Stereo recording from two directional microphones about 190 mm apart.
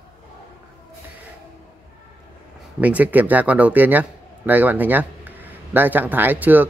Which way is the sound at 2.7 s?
10° right (ahead or behind).